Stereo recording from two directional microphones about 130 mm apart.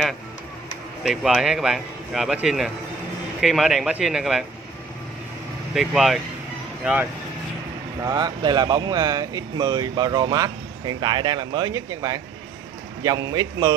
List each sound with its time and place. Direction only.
1.0 s speech: centre (ahead or behind)
5.8 s speech: centre (ahead or behind)
6.8 s speech: 10° right (ahead or behind)
8.0 s a man's voice: 30° right (ahead or behind)